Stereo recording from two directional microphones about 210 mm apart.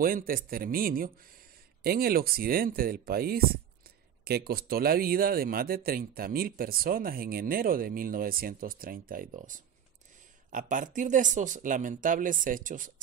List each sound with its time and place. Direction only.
0.0 s speech: 45° right (ahead or behind)